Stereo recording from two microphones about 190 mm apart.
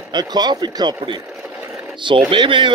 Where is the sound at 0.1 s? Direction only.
20° right (ahead or behind).